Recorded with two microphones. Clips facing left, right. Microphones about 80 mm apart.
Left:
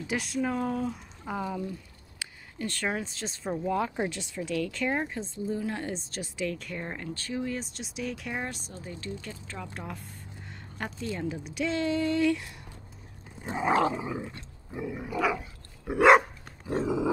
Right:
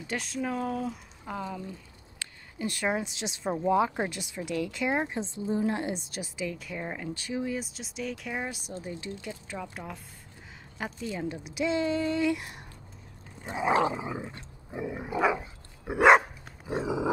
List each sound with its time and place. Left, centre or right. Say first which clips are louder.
0.0 s speech: left 3 dB; centre
2.2 s a sound: left 1 dB; centre
2.6 s speech: right 2 dB; centre
6.0 s speech: left 2 dB; centre
13.6 s speech: even; centre
14.3 s dog: right 1 dB; centre
16.2 s dog: left 4 dB; centre